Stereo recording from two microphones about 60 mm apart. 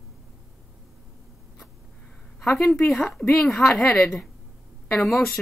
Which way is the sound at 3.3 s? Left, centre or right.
Centre.